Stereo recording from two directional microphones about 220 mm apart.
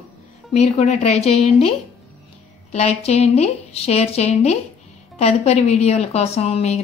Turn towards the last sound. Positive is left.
turn(degrees=30)  # may be behind; listen again after turning